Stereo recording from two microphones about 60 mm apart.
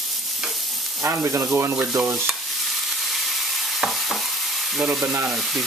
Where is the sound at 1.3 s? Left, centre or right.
Right.